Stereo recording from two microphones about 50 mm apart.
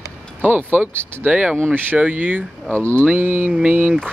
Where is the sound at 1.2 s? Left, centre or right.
Right.